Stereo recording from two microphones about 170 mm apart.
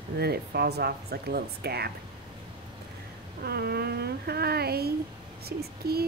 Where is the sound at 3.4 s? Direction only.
70° right (ahead or behind).